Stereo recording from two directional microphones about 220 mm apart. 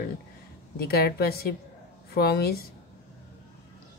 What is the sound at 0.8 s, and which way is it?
Speech, 45° left (ahead or behind).